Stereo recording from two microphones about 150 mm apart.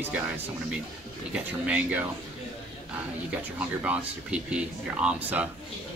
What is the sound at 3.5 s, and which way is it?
Speech, 10° right (ahead or behind).